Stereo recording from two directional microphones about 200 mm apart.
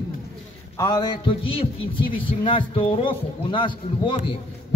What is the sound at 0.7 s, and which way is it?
Speech, 20° left (ahead or behind).